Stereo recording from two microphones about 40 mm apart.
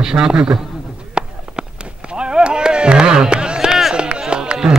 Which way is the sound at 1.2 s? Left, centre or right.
Right.